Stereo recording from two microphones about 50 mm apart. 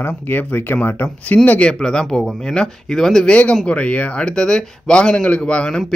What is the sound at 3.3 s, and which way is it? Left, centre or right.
Speech, left.